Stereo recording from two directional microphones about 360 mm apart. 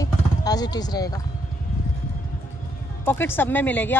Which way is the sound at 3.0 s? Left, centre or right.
Centre.